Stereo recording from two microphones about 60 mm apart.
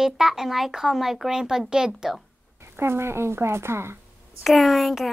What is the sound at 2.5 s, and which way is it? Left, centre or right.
Speech, right.